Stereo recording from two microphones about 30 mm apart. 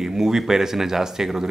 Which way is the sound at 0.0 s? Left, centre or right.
Centre.